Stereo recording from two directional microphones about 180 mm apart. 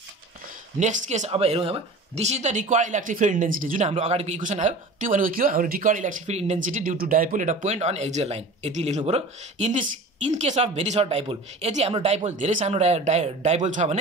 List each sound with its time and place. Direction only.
0.7 s speech: 40° right (ahead or behind)